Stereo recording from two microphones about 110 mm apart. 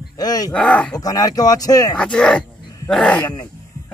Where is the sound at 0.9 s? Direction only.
35° left (ahead or behind).